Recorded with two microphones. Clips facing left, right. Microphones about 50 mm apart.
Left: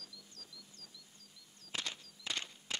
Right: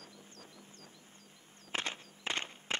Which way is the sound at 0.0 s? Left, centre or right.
Right.